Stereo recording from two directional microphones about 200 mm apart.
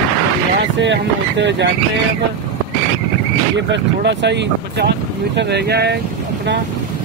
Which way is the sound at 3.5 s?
60° right (ahead or behind).